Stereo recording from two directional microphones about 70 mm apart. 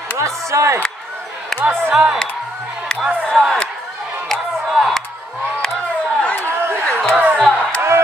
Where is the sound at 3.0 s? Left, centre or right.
Centre.